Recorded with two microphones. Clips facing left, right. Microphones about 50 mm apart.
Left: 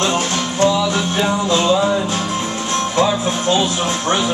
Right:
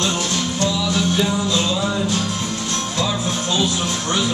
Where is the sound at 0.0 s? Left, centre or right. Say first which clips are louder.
Left 3 dB; left.